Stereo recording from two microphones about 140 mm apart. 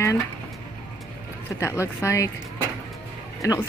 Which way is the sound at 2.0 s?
20° left (ahead or behind).